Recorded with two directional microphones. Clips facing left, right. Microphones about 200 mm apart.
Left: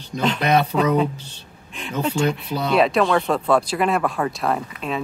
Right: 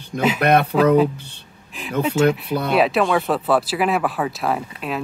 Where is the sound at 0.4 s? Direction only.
55° right (ahead or behind).